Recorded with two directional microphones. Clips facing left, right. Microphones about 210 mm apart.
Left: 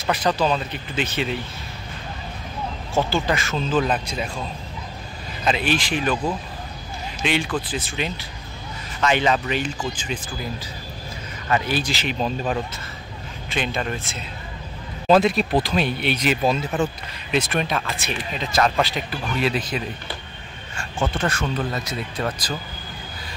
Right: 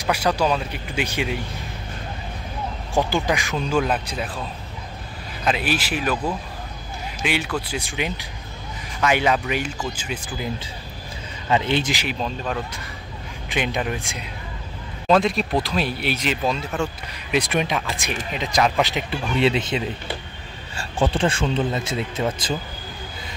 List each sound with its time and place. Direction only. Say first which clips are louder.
0.0 s speech: even; 10° right (ahead or behind)
2.9 s speech: right 1 dB; 15° right (ahead or behind)
5.4 s speech: left 1 dB; 5° right (ahead or behind)
7.2 s speech: left 2 dB; 10° right (ahead or behind)
11.4 s speech: right 2 dB; 20° right (ahead or behind)
12.2 s speech: left 3 dB; 5° left (ahead or behind)
13.5 s speech: right 1 dB; 15° right (ahead or behind)
15.0 s speech: left 2 dB; 5° left (ahead or behind)
17.3 s speech: right 1 dB; 15° right (ahead or behind)
21.1 s speech: right 3 dB; 30° right (ahead or behind)